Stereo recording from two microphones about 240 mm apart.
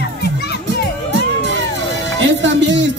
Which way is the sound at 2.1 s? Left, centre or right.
Right.